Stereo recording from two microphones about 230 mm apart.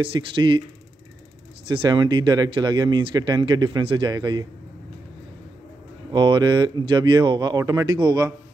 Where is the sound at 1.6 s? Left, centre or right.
Right.